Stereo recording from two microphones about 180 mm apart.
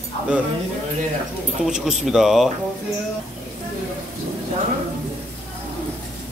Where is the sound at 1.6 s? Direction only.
5° right (ahead or behind).